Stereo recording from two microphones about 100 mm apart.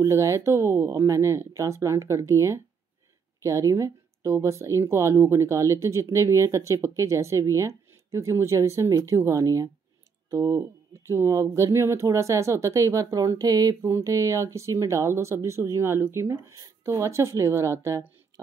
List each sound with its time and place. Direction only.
0.0 s speech: 30° right (ahead or behind)